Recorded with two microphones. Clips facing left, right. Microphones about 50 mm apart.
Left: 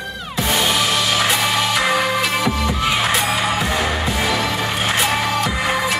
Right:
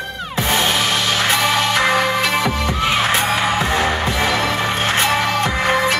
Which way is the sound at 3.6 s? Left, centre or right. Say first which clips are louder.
Right 2 dB; right.